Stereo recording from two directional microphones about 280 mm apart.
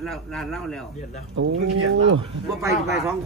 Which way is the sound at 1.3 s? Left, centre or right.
Right.